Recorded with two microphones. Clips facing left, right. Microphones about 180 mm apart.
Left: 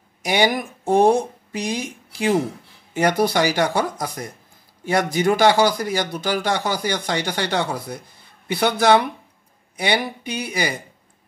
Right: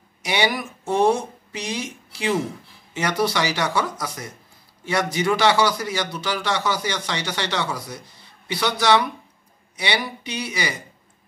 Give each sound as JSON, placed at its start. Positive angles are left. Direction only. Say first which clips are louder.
{"t": 0.2, "sound": "speech", "louder": "left 4 dB", "side_deg": 45}